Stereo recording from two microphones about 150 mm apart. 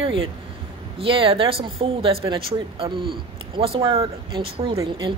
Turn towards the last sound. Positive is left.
turn(degrees=-30)  # may be behind; listen again after turning